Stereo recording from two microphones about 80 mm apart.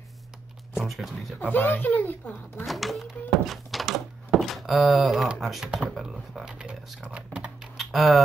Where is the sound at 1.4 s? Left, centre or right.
Left.